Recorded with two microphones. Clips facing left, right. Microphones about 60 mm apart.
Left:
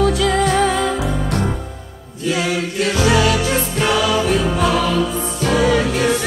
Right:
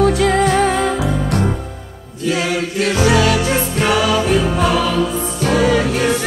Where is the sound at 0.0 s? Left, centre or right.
Right.